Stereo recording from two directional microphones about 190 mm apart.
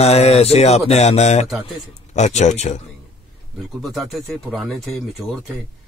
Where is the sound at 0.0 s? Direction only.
35° left (ahead or behind).